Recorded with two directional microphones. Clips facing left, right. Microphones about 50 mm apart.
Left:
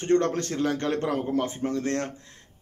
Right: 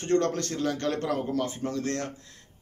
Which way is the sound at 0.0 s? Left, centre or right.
Left.